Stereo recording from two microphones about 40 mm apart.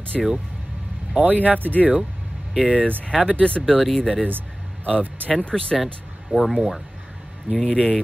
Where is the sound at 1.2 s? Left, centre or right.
Right.